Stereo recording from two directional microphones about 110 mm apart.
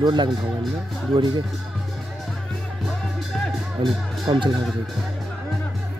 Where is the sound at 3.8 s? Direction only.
50° right (ahead or behind).